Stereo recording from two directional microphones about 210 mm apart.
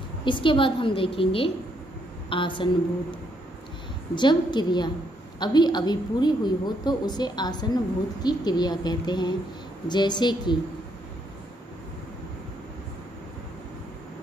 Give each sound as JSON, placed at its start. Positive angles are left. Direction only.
{"t": 0.2, "sound": "a woman's voice", "side_deg": 25}
{"t": 4.1, "sound": "a woman's voice", "side_deg": 20}